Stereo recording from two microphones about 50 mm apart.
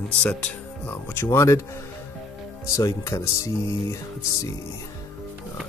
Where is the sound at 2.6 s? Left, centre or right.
Left.